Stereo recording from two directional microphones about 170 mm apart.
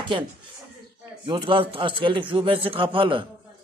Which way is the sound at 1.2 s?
30° right (ahead or behind).